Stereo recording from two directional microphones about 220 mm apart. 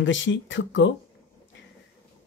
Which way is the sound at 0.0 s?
55° left (ahead or behind).